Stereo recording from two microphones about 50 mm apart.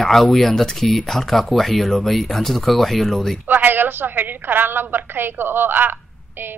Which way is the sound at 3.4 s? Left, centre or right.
Right.